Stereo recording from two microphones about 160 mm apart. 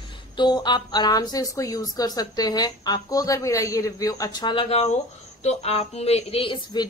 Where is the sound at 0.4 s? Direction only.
25° left (ahead or behind).